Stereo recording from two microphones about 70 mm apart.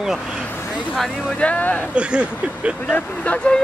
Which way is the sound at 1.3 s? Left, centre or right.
Centre.